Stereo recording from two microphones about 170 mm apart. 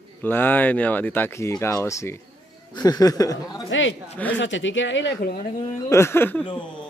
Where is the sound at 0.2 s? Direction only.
10° left (ahead or behind).